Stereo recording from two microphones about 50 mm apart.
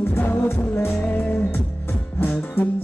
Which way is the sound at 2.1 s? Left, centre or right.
Left.